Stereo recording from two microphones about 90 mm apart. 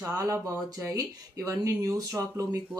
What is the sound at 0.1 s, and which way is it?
Speech, 35° right (ahead or behind).